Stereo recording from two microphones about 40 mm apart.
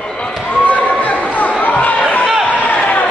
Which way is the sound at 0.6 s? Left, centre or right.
Left.